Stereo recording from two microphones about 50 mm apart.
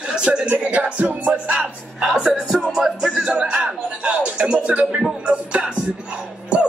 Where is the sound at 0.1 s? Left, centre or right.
Centre.